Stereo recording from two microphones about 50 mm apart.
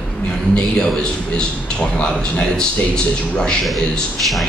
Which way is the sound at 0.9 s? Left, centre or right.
Centre.